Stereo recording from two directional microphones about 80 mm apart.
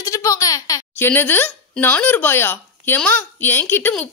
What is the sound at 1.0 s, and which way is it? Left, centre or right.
Speech, left.